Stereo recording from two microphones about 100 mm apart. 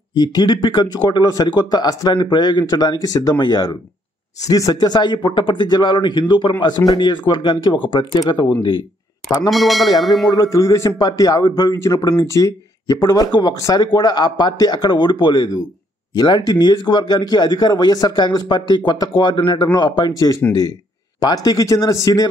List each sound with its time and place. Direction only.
0.1 s a man's voice: 45° left (ahead or behind)
9.5 s speech: centre (ahead or behind)
10.3 s a man's voice: 35° left (ahead or behind)